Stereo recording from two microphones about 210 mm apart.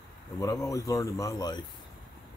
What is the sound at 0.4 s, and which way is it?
Speech, 15° left (ahead or behind).